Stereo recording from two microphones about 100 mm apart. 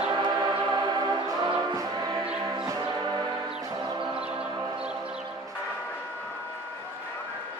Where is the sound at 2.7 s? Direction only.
40° right (ahead or behind).